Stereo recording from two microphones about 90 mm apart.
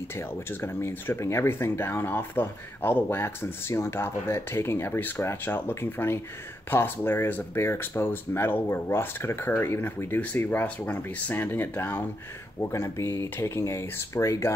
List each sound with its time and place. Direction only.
0.1 s speech: 25° left (ahead or behind)